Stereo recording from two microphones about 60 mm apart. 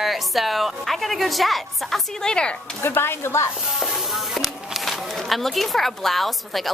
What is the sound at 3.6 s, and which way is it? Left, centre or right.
Speech, centre.